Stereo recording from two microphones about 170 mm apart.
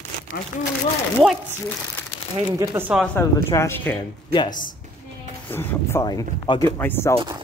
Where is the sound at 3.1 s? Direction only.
15° left (ahead or behind).